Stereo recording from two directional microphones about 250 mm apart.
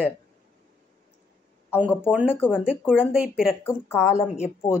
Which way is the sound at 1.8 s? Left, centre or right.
Centre.